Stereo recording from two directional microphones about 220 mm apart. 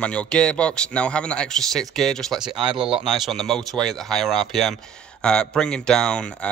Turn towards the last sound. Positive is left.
turn(degrees=5)  # may be behind; listen again after turning